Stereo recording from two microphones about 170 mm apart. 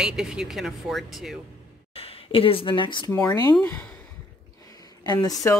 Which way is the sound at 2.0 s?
35° left (ahead or behind).